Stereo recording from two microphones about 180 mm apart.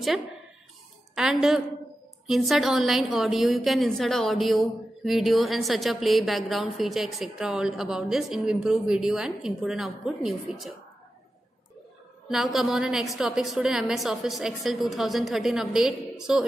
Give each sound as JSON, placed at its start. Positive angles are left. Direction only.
{"t": 1.1, "sound": "a woman's voice", "side_deg": 0}
{"t": 12.3, "sound": "a woman's voice", "side_deg": 0}